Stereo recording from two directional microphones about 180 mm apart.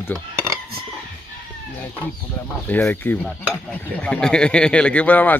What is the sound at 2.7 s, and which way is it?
Speech, 10° left (ahead or behind).